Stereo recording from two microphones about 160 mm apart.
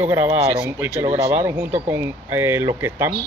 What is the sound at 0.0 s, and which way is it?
Speech, 15° right (ahead or behind).